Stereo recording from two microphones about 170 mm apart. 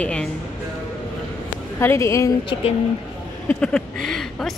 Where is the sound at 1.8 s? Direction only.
15° left (ahead or behind).